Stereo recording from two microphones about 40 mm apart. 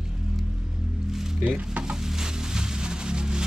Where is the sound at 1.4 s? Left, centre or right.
Right.